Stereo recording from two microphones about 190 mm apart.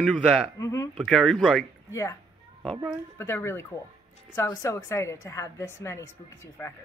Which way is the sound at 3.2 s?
10° left (ahead or behind).